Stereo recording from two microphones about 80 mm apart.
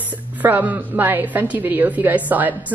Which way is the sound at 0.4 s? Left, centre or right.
Right.